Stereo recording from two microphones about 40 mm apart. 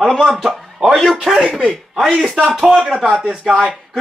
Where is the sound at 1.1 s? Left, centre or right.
Centre.